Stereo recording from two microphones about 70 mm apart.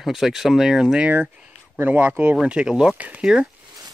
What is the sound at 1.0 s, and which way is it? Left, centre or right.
Speech, centre.